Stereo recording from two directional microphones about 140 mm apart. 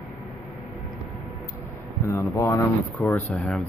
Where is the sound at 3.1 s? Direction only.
10° left (ahead or behind).